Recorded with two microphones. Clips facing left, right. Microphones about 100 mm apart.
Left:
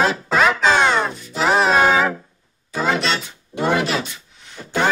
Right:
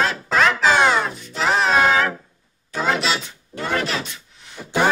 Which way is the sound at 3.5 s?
20° left (ahead or behind).